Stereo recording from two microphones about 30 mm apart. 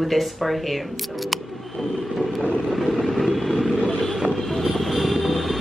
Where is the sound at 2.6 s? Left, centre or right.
Centre.